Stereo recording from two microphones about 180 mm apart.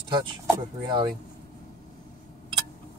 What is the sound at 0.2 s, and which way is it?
Speech, 25° right (ahead or behind).